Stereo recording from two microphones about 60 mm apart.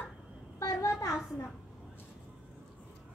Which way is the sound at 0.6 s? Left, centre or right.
Left.